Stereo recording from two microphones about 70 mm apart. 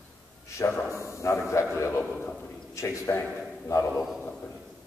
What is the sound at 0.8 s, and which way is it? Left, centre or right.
A man's voice, left.